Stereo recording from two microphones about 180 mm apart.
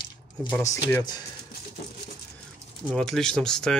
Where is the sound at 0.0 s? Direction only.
25° left (ahead or behind).